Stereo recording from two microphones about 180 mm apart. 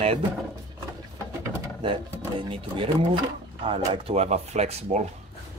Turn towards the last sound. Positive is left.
turn(degrees=-40)  # may be behind; listen again after turning